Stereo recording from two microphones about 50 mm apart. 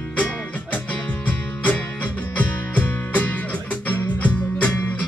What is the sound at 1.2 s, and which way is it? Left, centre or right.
Music, left.